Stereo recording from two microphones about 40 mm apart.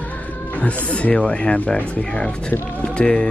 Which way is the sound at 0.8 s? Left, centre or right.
Left.